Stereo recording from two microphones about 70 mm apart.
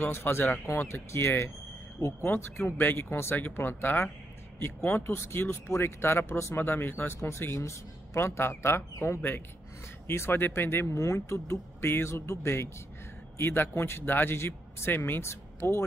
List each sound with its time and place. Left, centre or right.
0.1 s speech: left
6.6 s speech: left